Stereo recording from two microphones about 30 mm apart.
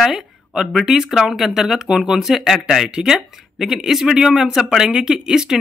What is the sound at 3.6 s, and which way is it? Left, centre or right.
Speech, centre.